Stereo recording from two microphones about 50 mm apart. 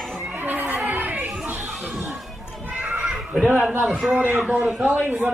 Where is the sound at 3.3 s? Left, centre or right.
Centre.